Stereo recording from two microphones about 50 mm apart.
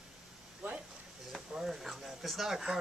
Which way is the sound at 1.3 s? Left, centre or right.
Centre.